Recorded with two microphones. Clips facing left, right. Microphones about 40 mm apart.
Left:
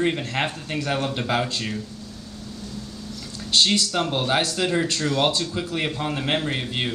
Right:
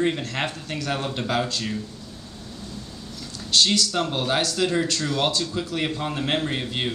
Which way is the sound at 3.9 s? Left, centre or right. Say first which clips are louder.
Left 1 dB; centre.